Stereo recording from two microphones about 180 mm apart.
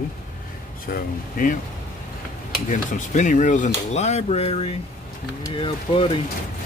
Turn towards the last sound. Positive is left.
turn(degrees=30)  # may be behind; listen again after turning